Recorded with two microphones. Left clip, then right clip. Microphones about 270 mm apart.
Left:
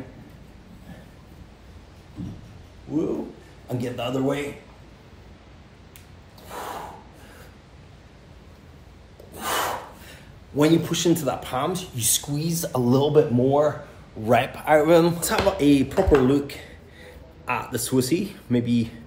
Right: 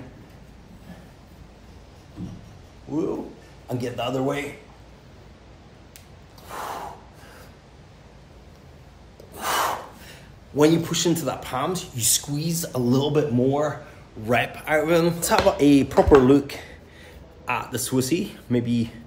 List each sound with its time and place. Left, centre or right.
3.6 s a man's voice: centre
6.5 s snort: centre
9.3 s a man's voice: centre
15.2 s speech: centre
17.5 s speech: centre